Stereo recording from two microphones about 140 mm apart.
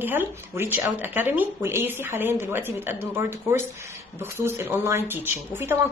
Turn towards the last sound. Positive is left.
turn(degrees=-15)  # may be behind; listen again after turning